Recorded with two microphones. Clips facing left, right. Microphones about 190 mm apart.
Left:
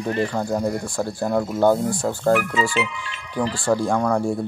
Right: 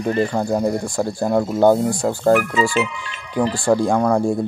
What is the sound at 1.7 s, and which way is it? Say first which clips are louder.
Speech: right 3 dB; 15° right (ahead or behind).